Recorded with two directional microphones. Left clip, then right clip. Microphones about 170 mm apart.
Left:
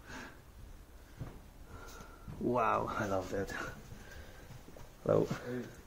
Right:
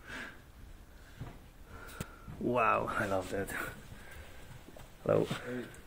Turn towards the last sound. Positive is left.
turn(degrees=-5)  # may be behind; listen again after turning